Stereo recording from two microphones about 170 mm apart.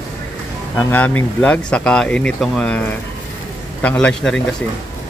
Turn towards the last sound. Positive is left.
turn(degrees=5)  # may be behind; listen again after turning